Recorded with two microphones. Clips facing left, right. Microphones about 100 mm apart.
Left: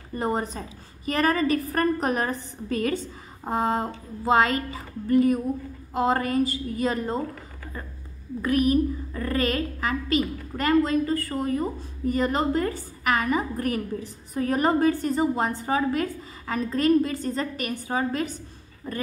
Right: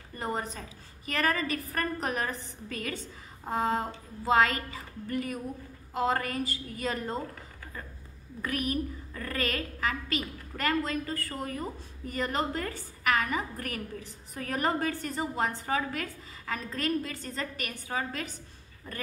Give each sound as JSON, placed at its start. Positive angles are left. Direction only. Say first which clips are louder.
{"t": 0.1, "sound": "a woman's voice", "louder": "left 7 dB", "side_deg": 30}
{"t": 8.4, "sound": "a woman's voice", "louder": "left 10 dB", "side_deg": 25}